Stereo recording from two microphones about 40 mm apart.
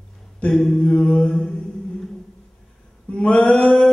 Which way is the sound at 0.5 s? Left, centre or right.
Centre.